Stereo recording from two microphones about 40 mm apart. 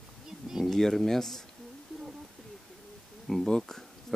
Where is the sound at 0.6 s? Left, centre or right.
Centre.